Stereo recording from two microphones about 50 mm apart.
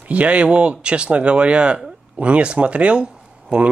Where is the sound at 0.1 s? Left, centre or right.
Right.